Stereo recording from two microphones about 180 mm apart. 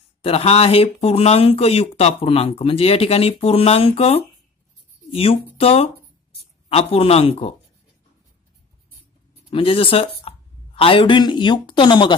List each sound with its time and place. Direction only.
0.2 s speech: 35° left (ahead or behind)
9.5 s a woman's voice: 30° left (ahead or behind)